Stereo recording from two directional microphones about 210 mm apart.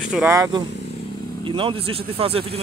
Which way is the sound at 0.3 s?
15° right (ahead or behind).